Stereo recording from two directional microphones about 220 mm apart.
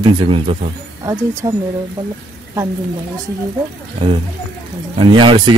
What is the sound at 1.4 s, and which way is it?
Speech, 15° right (ahead or behind).